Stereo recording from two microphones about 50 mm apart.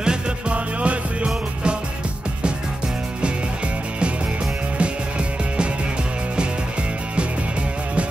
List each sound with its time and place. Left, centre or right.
0.0 s music: right